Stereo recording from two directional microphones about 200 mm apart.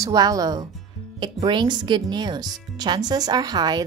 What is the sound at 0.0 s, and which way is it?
Speech, 20° right (ahead or behind).